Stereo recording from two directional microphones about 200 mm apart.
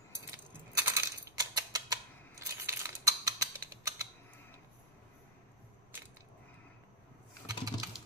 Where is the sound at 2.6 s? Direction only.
15° right (ahead or behind).